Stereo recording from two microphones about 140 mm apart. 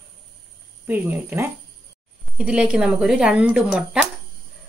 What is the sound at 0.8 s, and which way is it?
Speech, 10° right (ahead or behind).